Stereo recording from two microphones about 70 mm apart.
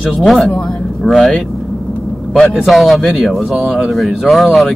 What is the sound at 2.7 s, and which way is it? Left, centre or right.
Speech, centre.